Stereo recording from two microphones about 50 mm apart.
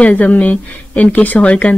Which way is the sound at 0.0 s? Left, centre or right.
Left.